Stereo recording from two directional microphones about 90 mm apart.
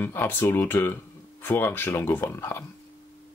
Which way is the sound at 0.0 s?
25° left (ahead or behind).